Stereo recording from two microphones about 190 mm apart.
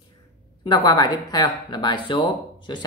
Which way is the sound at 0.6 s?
25° left (ahead or behind).